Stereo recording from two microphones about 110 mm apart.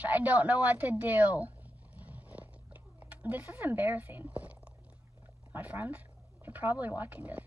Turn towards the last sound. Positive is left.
turn(degrees=-15)  # may be behind; listen again after turning